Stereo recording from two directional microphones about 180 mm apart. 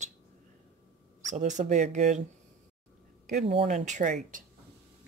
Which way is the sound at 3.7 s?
45° right (ahead or behind).